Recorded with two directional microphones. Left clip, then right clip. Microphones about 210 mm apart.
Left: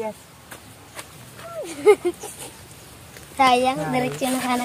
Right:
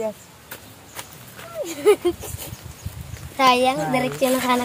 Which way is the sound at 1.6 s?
35° right (ahead or behind).